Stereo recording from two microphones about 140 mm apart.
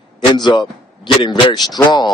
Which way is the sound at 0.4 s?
35° left (ahead or behind).